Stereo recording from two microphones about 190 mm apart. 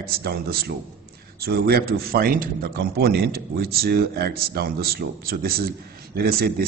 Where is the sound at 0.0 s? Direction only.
55° right (ahead or behind).